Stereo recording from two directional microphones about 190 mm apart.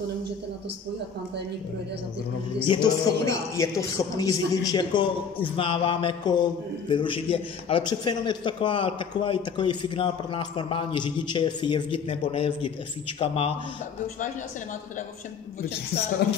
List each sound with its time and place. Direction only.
2.7 s a man's voice: 20° left (ahead or behind)